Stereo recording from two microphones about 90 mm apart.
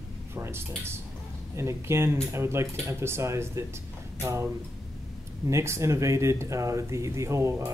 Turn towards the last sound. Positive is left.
turn(degrees=-30)  # may be behind; listen again after turning